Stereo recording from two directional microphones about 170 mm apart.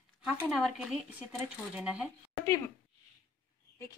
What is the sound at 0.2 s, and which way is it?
A woman's voice, centre (ahead or behind).